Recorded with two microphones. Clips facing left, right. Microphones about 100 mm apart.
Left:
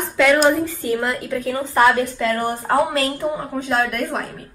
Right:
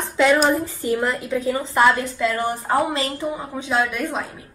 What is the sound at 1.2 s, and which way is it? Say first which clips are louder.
Speech: even; 20° right (ahead or behind).